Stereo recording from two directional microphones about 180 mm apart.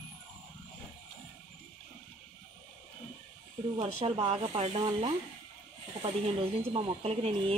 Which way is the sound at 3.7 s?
35° right (ahead or behind).